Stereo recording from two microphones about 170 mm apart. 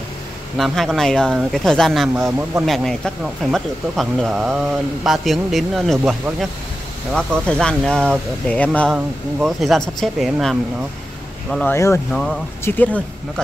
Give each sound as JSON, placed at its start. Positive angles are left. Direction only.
{"t": 0.6, "sound": "speech", "side_deg": 0}
{"t": 2.1, "sound": "speech", "side_deg": -15}
{"t": 2.6, "sound": "speech", "side_deg": 0}
{"t": 11.5, "sound": "speech", "side_deg": 15}
{"t": 12.1, "sound": "speech", "side_deg": 0}